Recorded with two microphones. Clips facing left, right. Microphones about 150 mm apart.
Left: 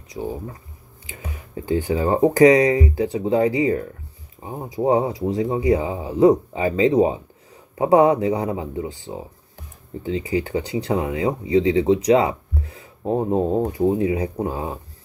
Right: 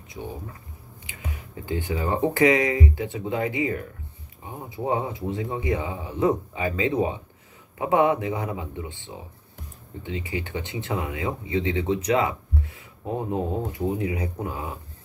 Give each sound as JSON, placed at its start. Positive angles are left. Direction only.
{"t": 1.7, "sound": "speech", "side_deg": 35}